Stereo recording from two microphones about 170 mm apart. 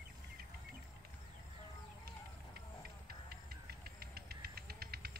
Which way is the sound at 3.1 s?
65° right (ahead or behind).